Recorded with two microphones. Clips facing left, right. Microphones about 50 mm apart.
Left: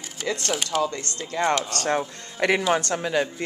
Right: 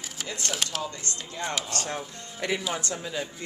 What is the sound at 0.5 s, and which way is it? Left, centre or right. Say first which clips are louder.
Speech: left 5 dB; centre.